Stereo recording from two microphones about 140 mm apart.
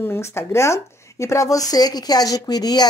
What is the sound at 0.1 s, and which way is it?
A woman's voice, 20° left (ahead or behind).